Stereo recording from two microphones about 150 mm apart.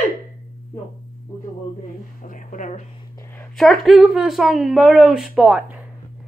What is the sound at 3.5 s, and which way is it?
A woman's voice, centre (ahead or behind).